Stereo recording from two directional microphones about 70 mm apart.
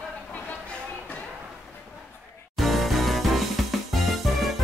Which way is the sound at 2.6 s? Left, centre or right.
Centre.